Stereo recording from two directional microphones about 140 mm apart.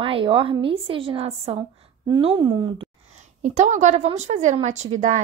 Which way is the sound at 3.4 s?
60° right (ahead or behind).